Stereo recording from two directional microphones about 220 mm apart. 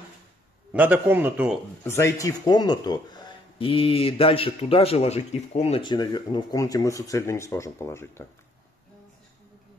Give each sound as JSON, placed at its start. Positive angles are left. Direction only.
{"t": 0.7, "sound": "a man's voice", "side_deg": -5}
{"t": 1.9, "sound": "speech", "side_deg": 10}